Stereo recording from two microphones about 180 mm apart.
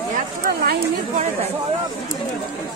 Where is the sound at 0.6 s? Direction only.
55° right (ahead or behind).